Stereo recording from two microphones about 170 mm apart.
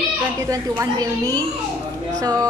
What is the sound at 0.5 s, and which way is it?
Speech, 20° right (ahead or behind).